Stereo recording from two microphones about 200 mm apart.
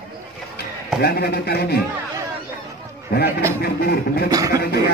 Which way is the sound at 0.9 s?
50° left (ahead or behind).